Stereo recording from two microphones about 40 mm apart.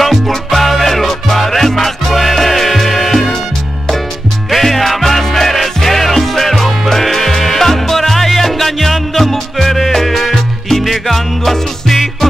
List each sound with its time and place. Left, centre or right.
0.0 s music: centre
4.5 s music: centre